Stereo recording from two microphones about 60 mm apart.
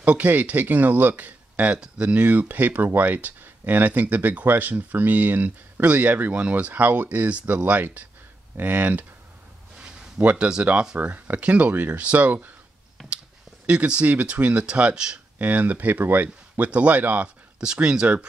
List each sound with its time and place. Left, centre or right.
0.0 s speech: right
9.8 s a sound: right
10.4 s speech: right
13.7 s speech: centre
15.3 s speech: right